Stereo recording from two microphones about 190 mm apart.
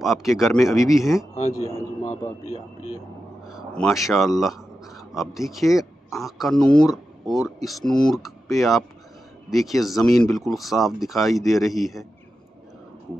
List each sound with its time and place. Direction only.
0.0 s speech: centre (ahead or behind)
1.7 s a man's voice: 15° left (ahead or behind)
2.4 s speech: 35° left (ahead or behind)
3.4 s speech: centre (ahead or behind)